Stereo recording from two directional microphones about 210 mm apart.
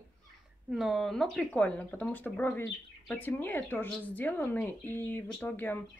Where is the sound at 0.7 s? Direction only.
Centre (ahead or behind).